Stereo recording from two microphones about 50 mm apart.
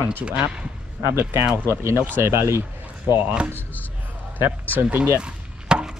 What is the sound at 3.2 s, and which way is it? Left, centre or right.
Speech, right.